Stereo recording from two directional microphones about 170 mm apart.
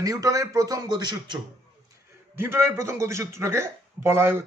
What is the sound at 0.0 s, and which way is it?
A man's voice, 20° right (ahead or behind).